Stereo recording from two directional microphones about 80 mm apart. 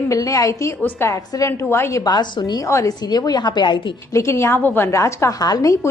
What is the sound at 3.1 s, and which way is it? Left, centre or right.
Speech, left.